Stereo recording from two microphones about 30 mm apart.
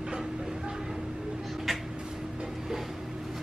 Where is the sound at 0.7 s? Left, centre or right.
Centre.